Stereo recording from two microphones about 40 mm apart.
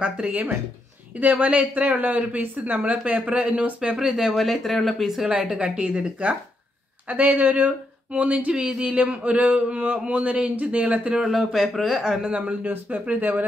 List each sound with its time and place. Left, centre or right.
0.2 s speech: right
3.9 s speech: centre
4.4 s speech: centre
5.0 s speech: centre
5.3 s speech: right
7.1 s speech: right
9.9 s speech: right
11.1 s speech: centre
12.0 s speech: right
12.4 s speech: right